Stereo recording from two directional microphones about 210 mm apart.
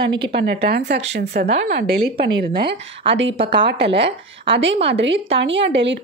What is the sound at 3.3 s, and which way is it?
A woman's voice, 25° right (ahead or behind).